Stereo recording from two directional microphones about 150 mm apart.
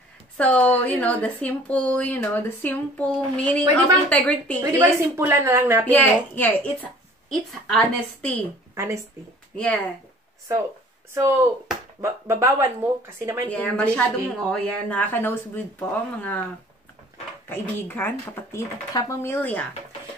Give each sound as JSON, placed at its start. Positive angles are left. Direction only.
{"t": 0.4, "sound": "speech", "side_deg": 10}
{"t": 4.7, "sound": "speech", "side_deg": -15}
{"t": 5.9, "sound": "speech", "side_deg": 10}
{"t": 8.7, "sound": "speech", "side_deg": -20}
{"t": 11.1, "sound": "speech", "side_deg": -20}
{"t": 13.5, "sound": "speech", "side_deg": 10}
{"t": 17.5, "sound": "speech", "side_deg": 15}